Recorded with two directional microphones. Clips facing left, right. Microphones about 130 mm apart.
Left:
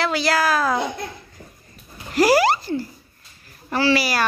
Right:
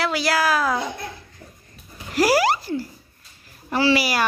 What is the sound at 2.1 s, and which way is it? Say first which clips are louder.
Speech: left 2 dB; 5° right (ahead or behind).